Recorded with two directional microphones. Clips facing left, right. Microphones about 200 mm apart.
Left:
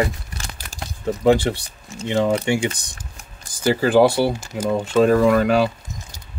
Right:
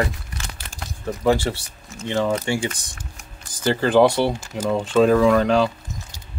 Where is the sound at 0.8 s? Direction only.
20° left (ahead or behind).